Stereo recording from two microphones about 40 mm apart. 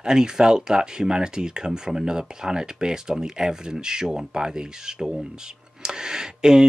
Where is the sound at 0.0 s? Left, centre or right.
Centre.